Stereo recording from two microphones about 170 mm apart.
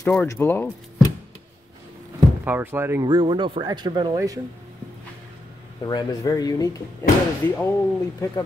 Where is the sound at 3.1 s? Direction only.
25° right (ahead or behind).